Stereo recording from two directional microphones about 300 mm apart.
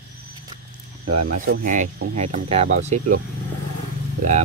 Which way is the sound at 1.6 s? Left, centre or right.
Right.